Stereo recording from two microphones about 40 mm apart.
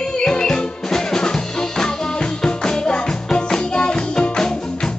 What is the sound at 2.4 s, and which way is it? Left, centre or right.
Music, centre.